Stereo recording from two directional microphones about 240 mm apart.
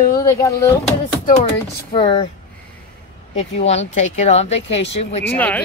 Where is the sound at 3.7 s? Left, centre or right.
Left.